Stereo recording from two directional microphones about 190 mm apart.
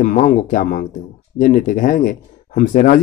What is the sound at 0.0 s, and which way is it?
A man's voice, 40° left (ahead or behind).